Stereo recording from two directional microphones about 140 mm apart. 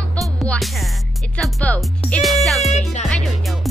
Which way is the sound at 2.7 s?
55° left (ahead or behind).